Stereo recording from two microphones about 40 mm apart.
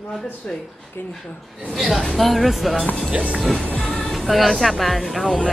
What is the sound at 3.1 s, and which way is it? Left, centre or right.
Speech, right.